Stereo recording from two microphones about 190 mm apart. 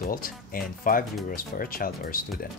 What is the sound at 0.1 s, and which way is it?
Speech, 50° left (ahead or behind).